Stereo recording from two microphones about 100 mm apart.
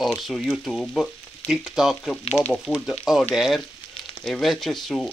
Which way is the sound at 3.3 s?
5° right (ahead or behind).